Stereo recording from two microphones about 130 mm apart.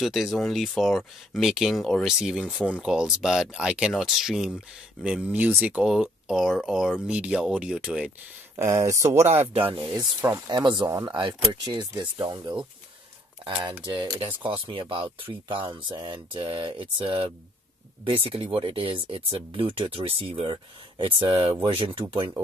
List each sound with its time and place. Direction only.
0.0 s speech: centre (ahead or behind)
8.5 s speech: 20° right (ahead or behind)
9.5 s speech: 45° right (ahead or behind)
9.9 s speech: 20° right (ahead or behind)
13.8 s speech: 35° right (ahead or behind)